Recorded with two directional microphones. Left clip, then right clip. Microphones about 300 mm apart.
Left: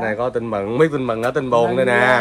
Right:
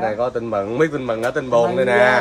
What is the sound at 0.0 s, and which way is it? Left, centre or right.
Speech, left.